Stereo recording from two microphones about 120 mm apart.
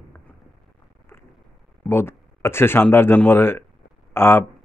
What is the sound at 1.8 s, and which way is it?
Speech, 20° left (ahead or behind).